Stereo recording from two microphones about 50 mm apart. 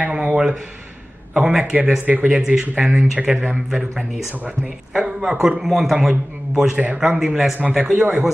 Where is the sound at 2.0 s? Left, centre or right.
Right.